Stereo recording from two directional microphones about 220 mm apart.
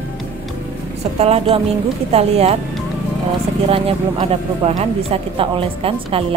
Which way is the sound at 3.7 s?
25° right (ahead or behind).